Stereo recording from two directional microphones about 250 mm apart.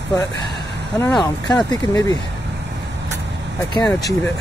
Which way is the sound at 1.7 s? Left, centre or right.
Centre.